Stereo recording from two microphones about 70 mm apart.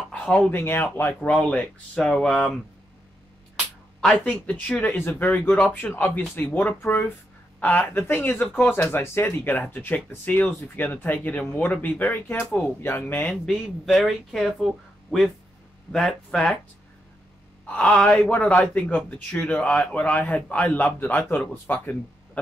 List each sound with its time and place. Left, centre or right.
0.2 s speech: centre
0.5 s speech: left
1.2 s speech: centre
4.0 s a man's voice: centre
8.7 s a man's voice: left
13.3 s a man's voice: centre
15.9 s speech: centre
17.6 s a man's voice: centre